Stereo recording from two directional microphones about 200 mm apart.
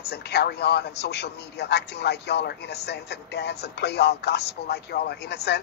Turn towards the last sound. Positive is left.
turn(degrees=55)  # may be behind; listen again after turning